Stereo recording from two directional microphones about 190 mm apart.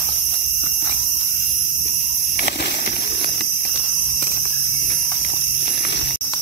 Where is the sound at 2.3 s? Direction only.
60° left (ahead or behind).